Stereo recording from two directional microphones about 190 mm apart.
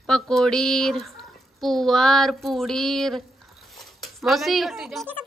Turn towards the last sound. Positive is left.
turn(degrees=0)  # may be behind; listen again after turning